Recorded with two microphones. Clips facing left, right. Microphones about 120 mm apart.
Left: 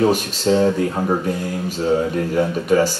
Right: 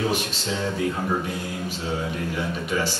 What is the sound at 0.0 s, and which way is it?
Speech, 45° left (ahead or behind).